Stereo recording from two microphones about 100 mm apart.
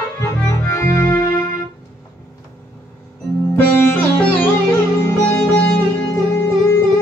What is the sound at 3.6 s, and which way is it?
Music, 20° left (ahead or behind).